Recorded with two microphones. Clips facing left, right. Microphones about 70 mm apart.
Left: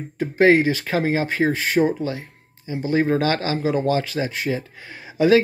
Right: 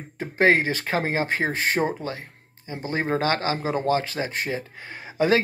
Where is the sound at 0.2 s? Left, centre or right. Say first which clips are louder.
Left 4 dB; right.